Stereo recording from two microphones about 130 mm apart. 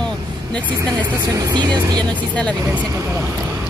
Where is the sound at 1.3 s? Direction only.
30° right (ahead or behind).